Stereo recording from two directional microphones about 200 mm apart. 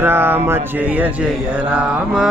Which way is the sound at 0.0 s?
10° right (ahead or behind).